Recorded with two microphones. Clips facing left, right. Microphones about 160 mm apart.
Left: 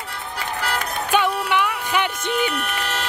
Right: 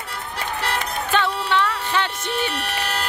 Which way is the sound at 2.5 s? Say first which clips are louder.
Even; 35° right (ahead or behind).